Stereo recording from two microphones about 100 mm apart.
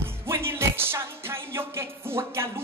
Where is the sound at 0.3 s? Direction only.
25° right (ahead or behind).